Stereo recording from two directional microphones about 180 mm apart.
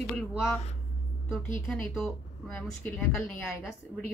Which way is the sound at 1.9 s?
Centre (ahead or behind).